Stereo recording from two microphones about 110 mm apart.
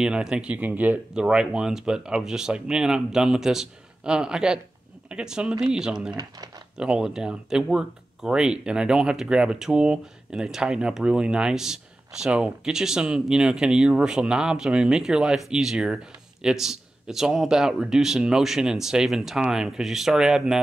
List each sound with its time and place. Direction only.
0.0 s speech: 5° right (ahead or behind)